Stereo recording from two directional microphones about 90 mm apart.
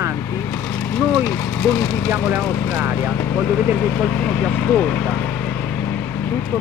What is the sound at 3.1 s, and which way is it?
Speech, 20° left (ahead or behind).